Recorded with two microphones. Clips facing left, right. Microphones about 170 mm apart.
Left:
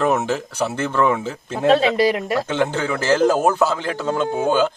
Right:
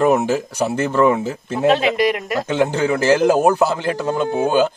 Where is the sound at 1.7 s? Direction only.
30° left (ahead or behind).